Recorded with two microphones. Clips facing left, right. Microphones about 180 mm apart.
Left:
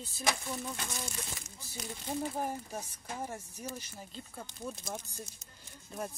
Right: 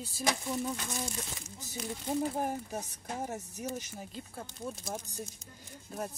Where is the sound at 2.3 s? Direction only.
15° right (ahead or behind).